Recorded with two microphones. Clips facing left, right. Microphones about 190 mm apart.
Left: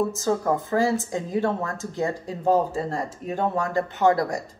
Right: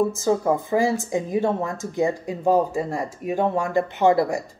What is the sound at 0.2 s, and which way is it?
A woman's voice, 15° right (ahead or behind).